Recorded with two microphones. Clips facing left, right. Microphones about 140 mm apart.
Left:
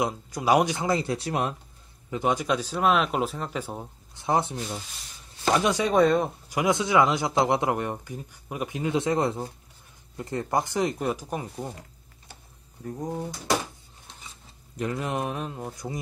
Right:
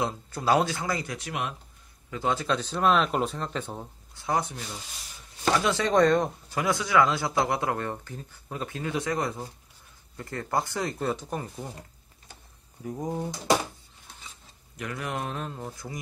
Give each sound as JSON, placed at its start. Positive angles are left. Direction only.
{"t": 0.0, "sound": "speech", "side_deg": 15}
{"t": 2.0, "sound": "speech", "side_deg": 20}
{"t": 4.1, "sound": "speech", "side_deg": 20}
{"t": 6.6, "sound": "speech", "side_deg": 20}
{"t": 12.8, "sound": "speech", "side_deg": -5}
{"t": 14.8, "sound": "speech", "side_deg": 25}